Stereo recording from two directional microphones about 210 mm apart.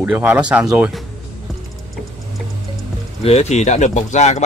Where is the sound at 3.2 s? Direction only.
30° left (ahead or behind).